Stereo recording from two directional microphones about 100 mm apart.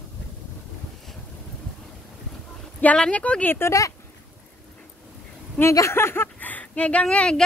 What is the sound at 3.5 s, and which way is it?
Speech, 30° left (ahead or behind).